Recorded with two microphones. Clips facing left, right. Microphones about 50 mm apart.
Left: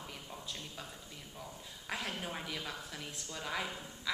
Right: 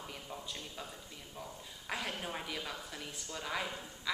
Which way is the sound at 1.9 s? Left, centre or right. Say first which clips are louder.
Right 1 dB; centre.